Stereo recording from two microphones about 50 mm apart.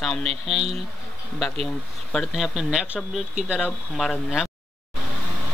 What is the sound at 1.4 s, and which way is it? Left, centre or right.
Speech, centre.